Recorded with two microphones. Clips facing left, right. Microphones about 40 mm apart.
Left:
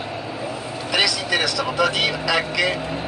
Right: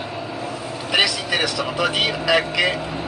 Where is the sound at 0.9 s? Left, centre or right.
Centre.